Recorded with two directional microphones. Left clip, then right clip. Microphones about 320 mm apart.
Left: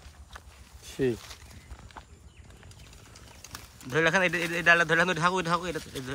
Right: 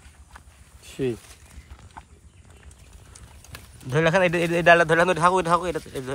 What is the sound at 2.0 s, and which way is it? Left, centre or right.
Horse, centre.